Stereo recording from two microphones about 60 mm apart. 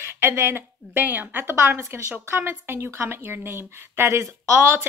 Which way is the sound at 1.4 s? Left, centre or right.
Right.